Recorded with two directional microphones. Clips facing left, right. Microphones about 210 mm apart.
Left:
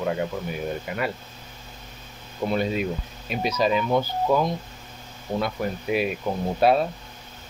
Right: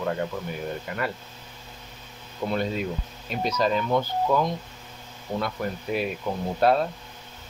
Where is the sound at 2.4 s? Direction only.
15° left (ahead or behind).